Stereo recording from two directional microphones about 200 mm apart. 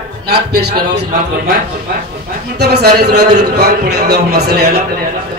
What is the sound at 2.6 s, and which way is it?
A man's voice, 55° right (ahead or behind).